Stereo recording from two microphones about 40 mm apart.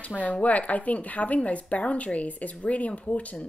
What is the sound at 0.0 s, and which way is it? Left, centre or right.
Speech, left.